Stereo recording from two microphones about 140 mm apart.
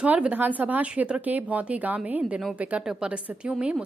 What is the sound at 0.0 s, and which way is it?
Speech, 10° right (ahead or behind).